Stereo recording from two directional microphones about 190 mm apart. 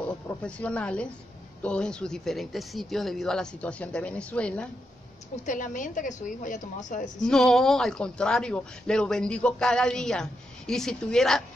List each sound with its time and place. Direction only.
0.0 s speech: 5° left (ahead or behind)
5.4 s a woman's voice: 40° left (ahead or behind)
7.2 s speech: 5° left (ahead or behind)